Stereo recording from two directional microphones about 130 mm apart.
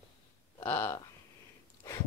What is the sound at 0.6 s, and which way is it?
Speech, 10° left (ahead or behind).